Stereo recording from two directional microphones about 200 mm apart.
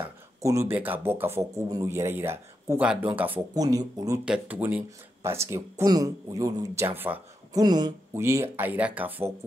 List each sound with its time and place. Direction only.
0.4 s speech: 15° right (ahead or behind)
4.2 s speech: 5° right (ahead or behind)
7.6 s speech: 20° right (ahead or behind)